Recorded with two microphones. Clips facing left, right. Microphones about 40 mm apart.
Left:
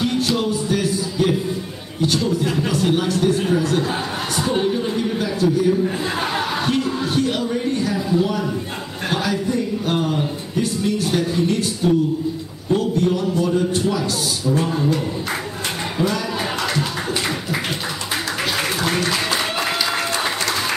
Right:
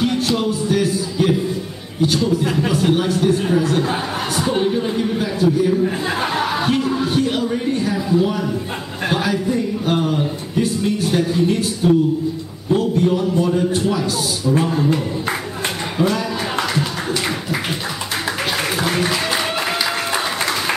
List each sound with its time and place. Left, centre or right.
0.0 s music: centre
2.0 s a man's voice: centre
9.1 s a sound: centre
12.9 s a sound: centre
13.5 s a man's voice: centre
16.0 s a man's voice: centre
18.9 s applause: centre